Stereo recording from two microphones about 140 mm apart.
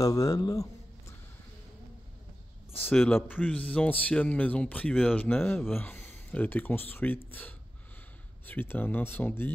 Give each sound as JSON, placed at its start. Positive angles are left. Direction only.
{"t": 0.0, "sound": "a man's voice", "side_deg": 25}
{"t": 2.7, "sound": "speech", "side_deg": 10}